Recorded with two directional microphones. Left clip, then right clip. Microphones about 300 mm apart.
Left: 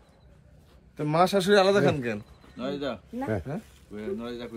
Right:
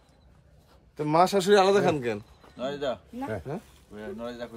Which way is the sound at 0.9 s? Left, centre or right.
Right.